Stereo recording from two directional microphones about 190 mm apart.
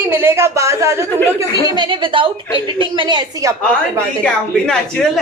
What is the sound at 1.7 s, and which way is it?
A woman's voice, 25° right (ahead or behind).